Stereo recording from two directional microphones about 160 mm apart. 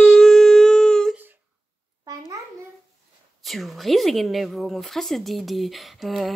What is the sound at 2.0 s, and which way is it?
Babbling, 25° right (ahead or behind).